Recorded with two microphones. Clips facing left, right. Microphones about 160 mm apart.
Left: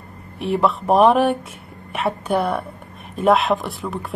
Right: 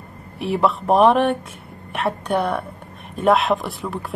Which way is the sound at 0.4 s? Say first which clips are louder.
Even; centre (ahead or behind).